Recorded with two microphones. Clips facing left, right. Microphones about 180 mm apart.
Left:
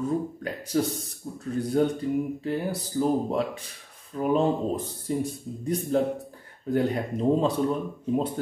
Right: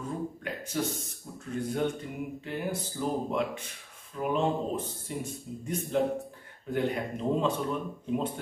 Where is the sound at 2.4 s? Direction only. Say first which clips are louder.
Left 5 dB; 35° left (ahead or behind).